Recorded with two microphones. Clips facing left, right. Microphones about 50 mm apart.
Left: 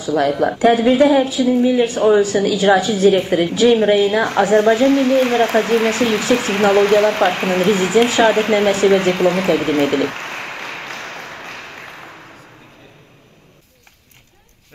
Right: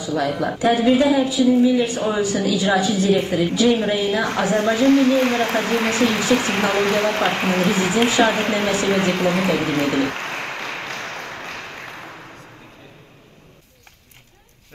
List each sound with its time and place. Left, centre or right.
0.0 s a woman's voice: left
4.4 s speech: centre
8.2 s a sound: centre